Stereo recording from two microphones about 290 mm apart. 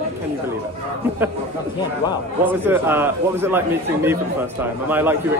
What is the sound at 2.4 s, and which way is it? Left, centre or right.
A man's voice, centre.